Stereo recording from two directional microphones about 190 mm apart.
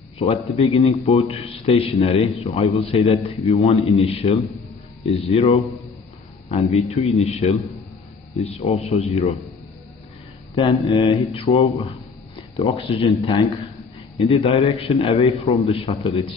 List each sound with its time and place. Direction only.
0.2 s a man's voice: 30° left (ahead or behind)
6.7 s a man's voice: 35° left (ahead or behind)
10.5 s a man's voice: 25° left (ahead or behind)